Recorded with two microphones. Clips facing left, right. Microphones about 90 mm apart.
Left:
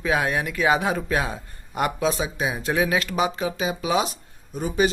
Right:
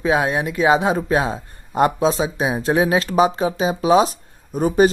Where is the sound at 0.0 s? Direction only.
25° right (ahead or behind).